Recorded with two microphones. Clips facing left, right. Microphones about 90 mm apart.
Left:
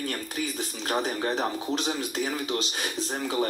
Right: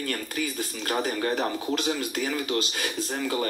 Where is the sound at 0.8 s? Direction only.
25° left (ahead or behind).